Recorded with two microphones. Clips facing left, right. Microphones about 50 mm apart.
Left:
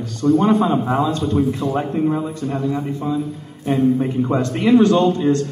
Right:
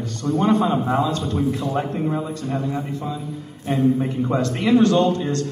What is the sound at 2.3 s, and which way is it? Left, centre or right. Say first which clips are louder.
Speech: left 2 dB; centre.